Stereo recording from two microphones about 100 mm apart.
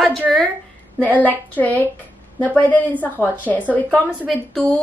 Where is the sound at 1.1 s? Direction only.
15° left (ahead or behind).